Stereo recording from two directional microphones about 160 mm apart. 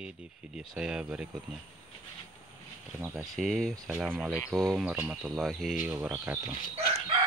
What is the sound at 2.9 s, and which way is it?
Speech, 15° right (ahead or behind).